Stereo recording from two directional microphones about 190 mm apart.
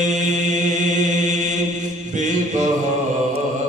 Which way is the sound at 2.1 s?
40° right (ahead or behind).